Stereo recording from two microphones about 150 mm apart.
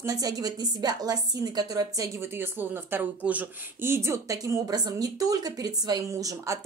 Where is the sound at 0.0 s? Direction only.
25° right (ahead or behind).